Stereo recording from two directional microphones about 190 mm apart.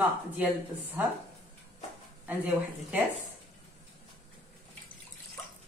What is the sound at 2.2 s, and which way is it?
Speech, 10° right (ahead or behind).